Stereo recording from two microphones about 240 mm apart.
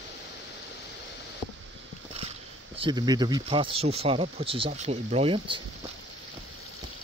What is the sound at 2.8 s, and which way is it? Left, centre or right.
Speech, centre.